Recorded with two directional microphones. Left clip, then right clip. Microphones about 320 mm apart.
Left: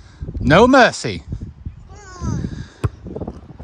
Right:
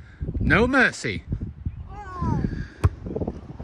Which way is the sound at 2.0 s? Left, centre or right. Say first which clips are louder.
Right 1 dB; right.